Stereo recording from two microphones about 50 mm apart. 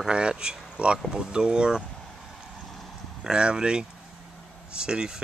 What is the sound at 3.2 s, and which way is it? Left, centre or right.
Speech, centre.